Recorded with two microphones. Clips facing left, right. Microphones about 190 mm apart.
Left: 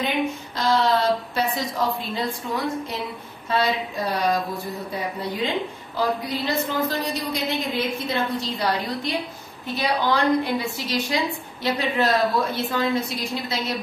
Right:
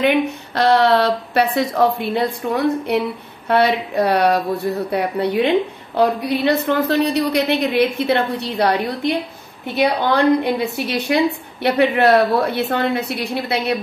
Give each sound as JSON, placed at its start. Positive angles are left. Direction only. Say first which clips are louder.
{"t": 0.0, "sound": "a woman's voice", "louder": "right 7 dB", "side_deg": -65}